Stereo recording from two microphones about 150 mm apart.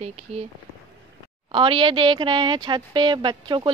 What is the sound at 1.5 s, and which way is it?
Speech, 35° right (ahead or behind).